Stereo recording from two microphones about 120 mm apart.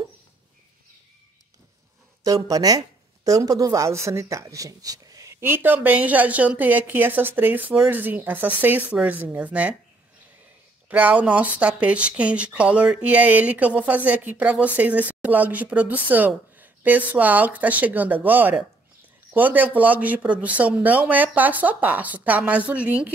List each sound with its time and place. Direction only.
2.2 s speech: 30° right (ahead or behind); by 9.8 s 10° right (ahead or behind)
10.9 s speech: 15° right (ahead or behind)